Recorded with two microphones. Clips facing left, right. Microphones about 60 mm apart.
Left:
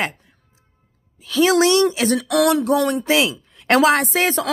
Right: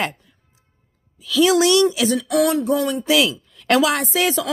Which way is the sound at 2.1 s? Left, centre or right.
Left.